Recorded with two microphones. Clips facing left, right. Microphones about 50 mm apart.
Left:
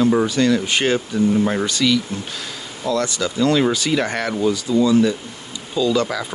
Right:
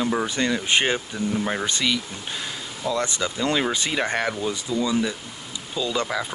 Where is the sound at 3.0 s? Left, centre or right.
Right.